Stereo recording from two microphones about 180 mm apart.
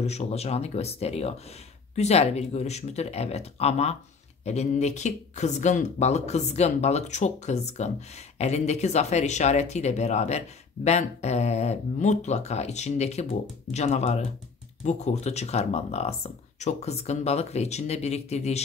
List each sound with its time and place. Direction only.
0.0 s speech: 35° left (ahead or behind)